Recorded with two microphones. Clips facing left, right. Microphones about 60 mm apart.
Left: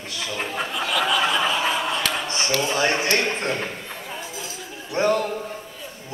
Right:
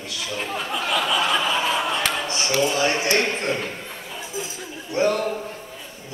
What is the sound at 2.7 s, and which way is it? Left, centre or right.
Speech, left.